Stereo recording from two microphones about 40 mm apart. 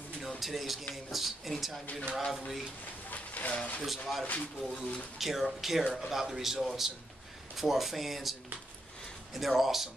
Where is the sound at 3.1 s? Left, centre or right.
Left.